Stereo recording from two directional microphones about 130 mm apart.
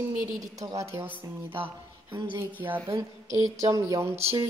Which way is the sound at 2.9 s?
25° right (ahead or behind).